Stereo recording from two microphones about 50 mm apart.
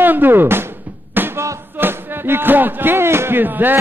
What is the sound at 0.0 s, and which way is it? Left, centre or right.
Speech, right.